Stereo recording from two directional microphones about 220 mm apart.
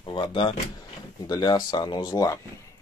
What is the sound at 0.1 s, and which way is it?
Speech, 20° left (ahead or behind).